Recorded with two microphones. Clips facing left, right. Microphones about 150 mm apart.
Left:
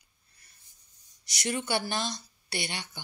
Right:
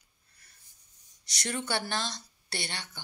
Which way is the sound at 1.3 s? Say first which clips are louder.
Left 3 dB; 10° left (ahead or behind).